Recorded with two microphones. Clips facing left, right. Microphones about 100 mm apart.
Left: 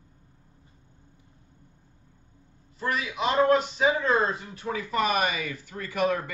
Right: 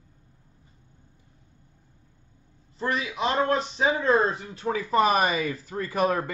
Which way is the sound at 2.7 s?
30° right (ahead or behind).